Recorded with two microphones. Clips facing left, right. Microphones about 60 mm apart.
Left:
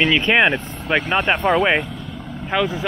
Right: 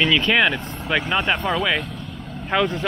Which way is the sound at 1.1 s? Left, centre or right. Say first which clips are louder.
Left 5 dB; centre.